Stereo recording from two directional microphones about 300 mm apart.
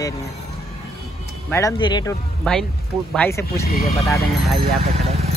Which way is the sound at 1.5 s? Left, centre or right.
Centre.